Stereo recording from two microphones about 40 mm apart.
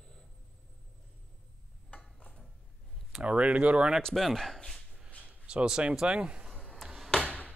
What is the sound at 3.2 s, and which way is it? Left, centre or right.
Speech, right.